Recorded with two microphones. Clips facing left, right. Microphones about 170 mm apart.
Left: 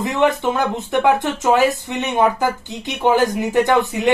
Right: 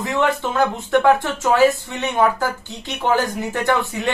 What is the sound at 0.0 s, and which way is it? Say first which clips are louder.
Speech: left 3 dB; 20° left (ahead or behind).